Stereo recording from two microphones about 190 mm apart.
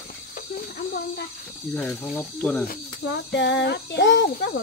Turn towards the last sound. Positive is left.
turn(degrees=70)  # may be behind; listen again after turning